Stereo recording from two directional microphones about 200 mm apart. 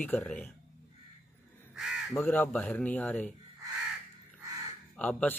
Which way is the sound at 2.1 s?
10° left (ahead or behind).